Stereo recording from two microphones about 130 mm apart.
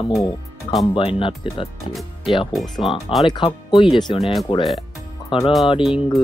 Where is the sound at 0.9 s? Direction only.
40° left (ahead or behind).